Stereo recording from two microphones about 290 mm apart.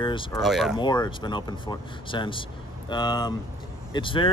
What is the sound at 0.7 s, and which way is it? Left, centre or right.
Speech, centre.